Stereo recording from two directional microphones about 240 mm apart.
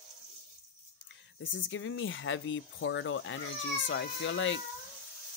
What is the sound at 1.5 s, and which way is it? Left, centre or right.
Speech, left.